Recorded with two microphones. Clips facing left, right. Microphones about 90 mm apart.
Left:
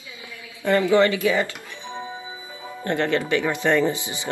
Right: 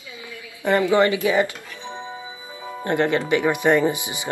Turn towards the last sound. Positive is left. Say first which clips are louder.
# right 1 dB
turn(degrees=-15)  # may be behind; listen again after turning